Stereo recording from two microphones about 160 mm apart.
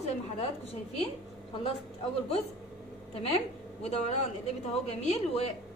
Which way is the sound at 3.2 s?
40° left (ahead or behind).